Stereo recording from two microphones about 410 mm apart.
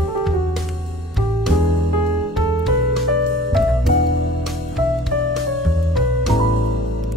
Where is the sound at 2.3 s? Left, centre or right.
Centre.